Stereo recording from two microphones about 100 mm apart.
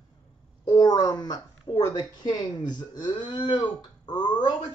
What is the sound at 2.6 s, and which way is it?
Speech, 45° left (ahead or behind).